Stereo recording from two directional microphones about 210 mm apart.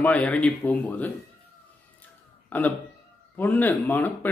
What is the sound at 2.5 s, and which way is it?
A man's voice, 5° left (ahead or behind).